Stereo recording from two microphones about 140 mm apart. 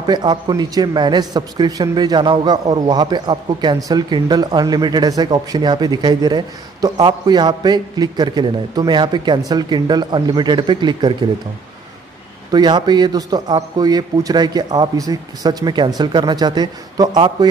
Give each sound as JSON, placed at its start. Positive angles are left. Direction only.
{"t": 0.0, "sound": "a man's voice", "side_deg": -30}
{"t": 12.4, "sound": "a man's voice", "side_deg": -30}